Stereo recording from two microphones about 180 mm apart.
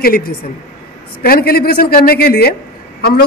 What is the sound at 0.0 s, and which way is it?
A woman's voice, 55° left (ahead or behind).